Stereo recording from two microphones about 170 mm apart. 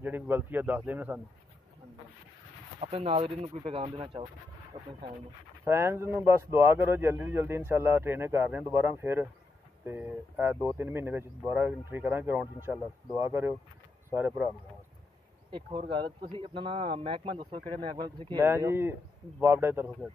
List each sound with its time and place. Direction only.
0.0 s speech: 10° right (ahead or behind)
2.8 s speech: 35° right (ahead or behind)
5.7 s speech: 15° right (ahead or behind)
15.5 s speech: 30° right (ahead or behind)
18.4 s speech: 15° right (ahead or behind)